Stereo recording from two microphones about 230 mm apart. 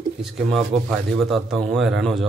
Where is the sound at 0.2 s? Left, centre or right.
Centre.